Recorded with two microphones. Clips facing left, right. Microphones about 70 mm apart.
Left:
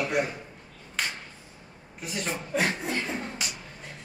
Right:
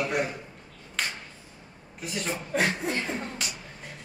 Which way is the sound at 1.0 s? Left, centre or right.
Centre.